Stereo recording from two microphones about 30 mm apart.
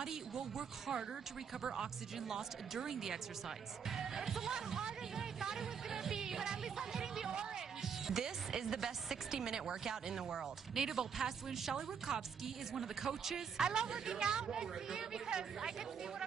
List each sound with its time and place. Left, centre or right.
0.0 s speech: centre
7.8 s speech: centre
12.1 s a woman's voice: right
12.7 s speech: centre
13.6 s a woman's voice: right